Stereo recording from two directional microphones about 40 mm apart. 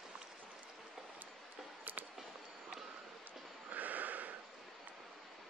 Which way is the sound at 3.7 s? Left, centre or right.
Right.